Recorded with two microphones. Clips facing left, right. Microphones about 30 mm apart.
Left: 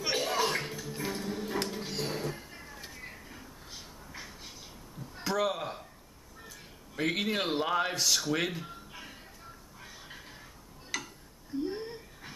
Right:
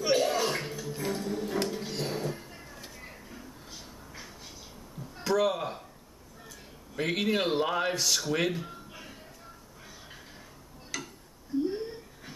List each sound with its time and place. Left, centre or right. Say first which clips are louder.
0.0 s a sound: right 4 dB; centre
7.0 s speech: right 2 dB; centre
10.9 s tick-tock: left 1 dB; centre
11.7 s wheeze: right 3 dB; centre